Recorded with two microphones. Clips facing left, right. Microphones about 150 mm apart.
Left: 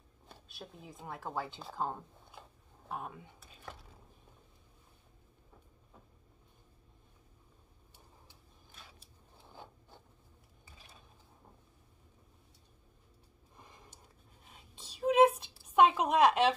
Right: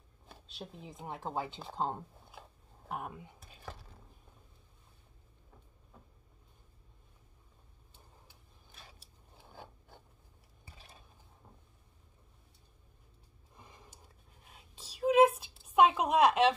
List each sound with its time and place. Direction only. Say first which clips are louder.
0.6 s speech: right 3 dB; 20° right (ahead or behind)
13.6 s whispering: right 1 dB; centre (ahead or behind)
15.6 s a sound: even; centre (ahead or behind)